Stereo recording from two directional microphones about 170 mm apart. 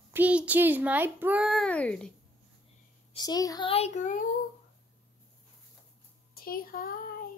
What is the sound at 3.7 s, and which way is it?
Speech, 40° left (ahead or behind).